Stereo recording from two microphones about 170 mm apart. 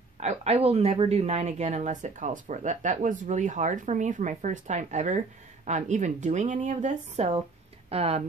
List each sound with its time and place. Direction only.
0.2 s speech: 40° right (ahead or behind)